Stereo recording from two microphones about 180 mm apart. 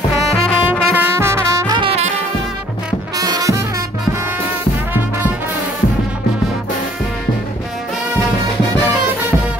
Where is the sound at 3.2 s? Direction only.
20° right (ahead or behind).